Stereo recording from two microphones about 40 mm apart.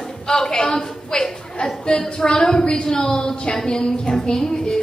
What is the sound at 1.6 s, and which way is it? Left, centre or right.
A woman's voice, left.